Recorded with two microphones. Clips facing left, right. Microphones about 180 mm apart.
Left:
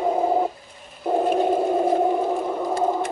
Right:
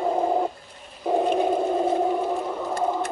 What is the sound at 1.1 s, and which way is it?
Whale vocalization, 5° left (ahead or behind).